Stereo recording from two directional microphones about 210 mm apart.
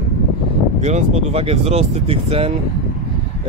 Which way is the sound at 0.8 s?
30° right (ahead or behind).